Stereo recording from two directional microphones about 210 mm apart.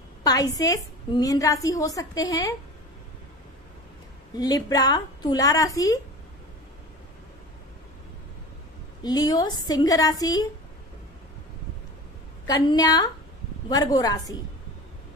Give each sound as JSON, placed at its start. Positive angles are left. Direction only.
{"t": 0.2, "sound": "a woman's voice", "side_deg": 15}
{"t": 4.4, "sound": "a woman's voice", "side_deg": 15}
{"t": 9.0, "sound": "a woman's voice", "side_deg": 20}
{"t": 12.4, "sound": "a woman's voice", "side_deg": 20}